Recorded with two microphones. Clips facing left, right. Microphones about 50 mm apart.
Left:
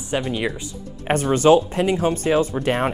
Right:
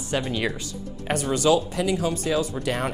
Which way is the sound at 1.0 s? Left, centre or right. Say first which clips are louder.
Left 6 dB; left.